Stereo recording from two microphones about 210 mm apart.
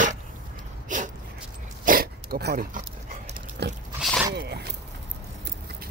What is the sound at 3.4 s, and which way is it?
Pig, 55° right (ahead or behind).